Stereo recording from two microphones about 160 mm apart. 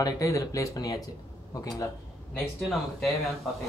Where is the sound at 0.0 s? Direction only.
20° left (ahead or behind).